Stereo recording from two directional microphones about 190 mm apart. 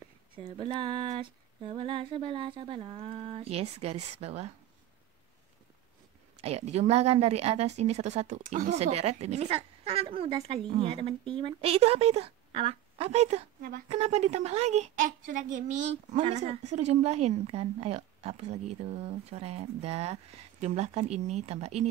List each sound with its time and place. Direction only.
0.5 s a sound: 30° right (ahead or behind)
6.3 s speech: 35° right (ahead or behind)
13.6 s speech: 50° right (ahead or behind)
13.8 s speech: 35° right (ahead or behind)